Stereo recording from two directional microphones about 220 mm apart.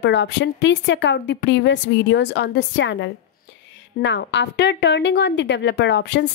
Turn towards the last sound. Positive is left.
turn(degrees=50)  # may be behind; listen again after turning